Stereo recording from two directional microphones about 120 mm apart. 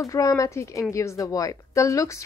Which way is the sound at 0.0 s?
25° left (ahead or behind).